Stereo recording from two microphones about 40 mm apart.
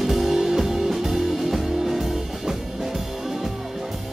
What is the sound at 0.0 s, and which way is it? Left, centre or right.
Music, centre.